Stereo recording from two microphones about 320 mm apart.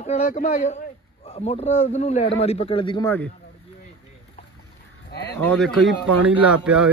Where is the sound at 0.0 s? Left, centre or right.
Left.